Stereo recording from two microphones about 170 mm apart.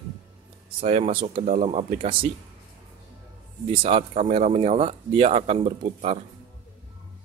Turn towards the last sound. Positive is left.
turn(degrees=-35)  # may be behind; listen again after turning